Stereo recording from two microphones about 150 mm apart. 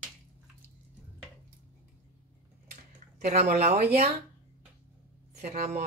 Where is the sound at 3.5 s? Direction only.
45° right (ahead or behind).